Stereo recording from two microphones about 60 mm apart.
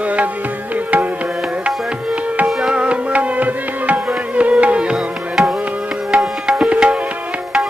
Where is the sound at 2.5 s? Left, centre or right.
Centre; by 4.5 s right.